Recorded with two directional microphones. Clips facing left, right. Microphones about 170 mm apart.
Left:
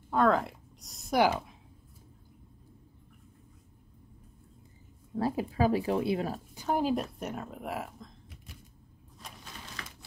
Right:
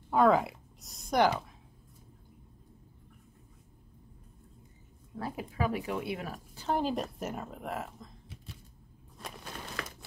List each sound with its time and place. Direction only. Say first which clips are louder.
0.1 s speech: right 1 dB; 5° right (ahead or behind)
5.2 s speech: left 6 dB; 30° left (ahead or behind)
6.5 s speech: left 1 dB; 10° left (ahead or behind)
9.2 s a sound: right 5 dB; 60° right (ahead or behind)